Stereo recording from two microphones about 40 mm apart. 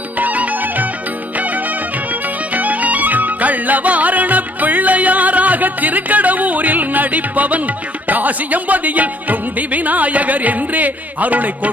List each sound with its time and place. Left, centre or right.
0.2 s music: right
2.5 s music: right
8.1 s speech: right